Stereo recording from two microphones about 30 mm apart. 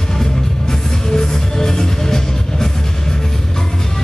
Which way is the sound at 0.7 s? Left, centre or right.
Centre.